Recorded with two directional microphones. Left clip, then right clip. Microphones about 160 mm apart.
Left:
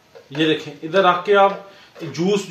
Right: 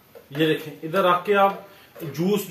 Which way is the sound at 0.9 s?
30° left (ahead or behind).